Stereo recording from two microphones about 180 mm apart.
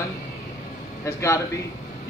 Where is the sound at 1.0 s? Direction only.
15° left (ahead or behind).